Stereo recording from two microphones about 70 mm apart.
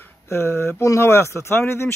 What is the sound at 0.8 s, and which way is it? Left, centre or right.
Speech, left.